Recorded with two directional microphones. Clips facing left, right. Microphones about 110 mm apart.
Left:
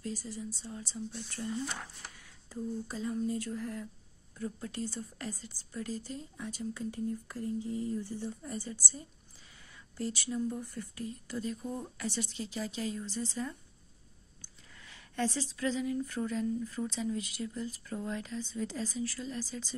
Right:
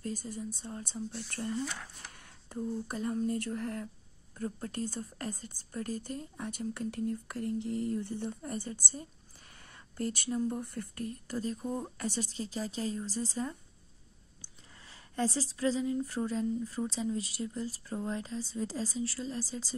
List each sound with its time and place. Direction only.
0.0 s speech: 50° right (ahead or behind)
4.4 s speech: 45° right (ahead or behind)
14.8 s speech: 35° right (ahead or behind)